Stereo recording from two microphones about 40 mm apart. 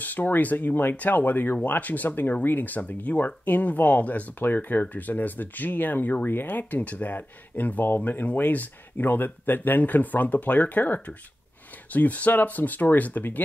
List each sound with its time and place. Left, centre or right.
0.0 s speech: left